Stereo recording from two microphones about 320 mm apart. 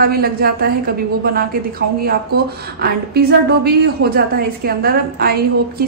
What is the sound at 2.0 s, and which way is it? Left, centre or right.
A woman's voice, right.